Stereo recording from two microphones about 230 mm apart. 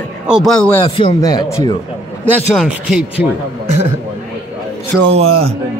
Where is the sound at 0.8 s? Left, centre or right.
Left.